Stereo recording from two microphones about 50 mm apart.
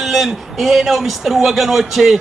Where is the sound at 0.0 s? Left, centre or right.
Centre.